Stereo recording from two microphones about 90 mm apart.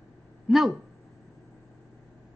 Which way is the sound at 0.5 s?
Centre (ahead or behind).